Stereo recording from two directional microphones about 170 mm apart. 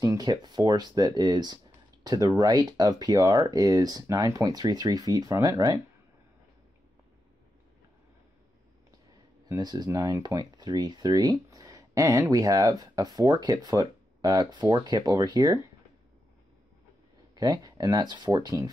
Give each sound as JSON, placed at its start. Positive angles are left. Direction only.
{"t": 0.0, "sound": "speech", "side_deg": -20}
{"t": 9.5, "sound": "speech", "side_deg": -25}
{"t": 17.4, "sound": "speech", "side_deg": -20}